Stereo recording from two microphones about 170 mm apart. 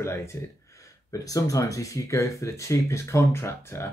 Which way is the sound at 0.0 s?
15° left (ahead or behind).